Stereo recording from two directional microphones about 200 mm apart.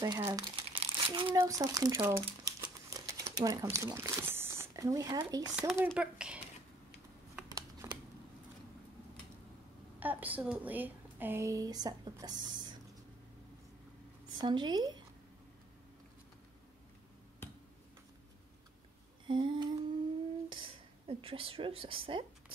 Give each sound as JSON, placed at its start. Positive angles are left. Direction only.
{"t": 0.0, "sound": "a woman's voice", "side_deg": -20}
{"t": 0.7, "sound": "crumpling", "side_deg": -25}
{"t": 1.4, "sound": "speech", "side_deg": -15}
{"t": 5.5, "sound": "speech", "side_deg": -5}
{"t": 7.4, "sound": "a sound", "side_deg": -20}
{"t": 9.9, "sound": "a woman's voice", "side_deg": -10}
{"t": 14.4, "sound": "a woman's voice", "side_deg": -20}
{"t": 19.2, "sound": "a woman's voice", "side_deg": -25}